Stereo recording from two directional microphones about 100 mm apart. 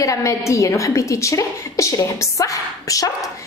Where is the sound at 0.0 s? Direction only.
35° left (ahead or behind).